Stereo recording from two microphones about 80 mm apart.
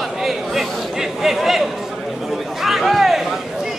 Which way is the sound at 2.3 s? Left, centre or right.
Centre.